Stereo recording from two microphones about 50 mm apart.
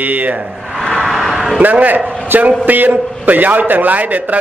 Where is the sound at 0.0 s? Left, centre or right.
Right.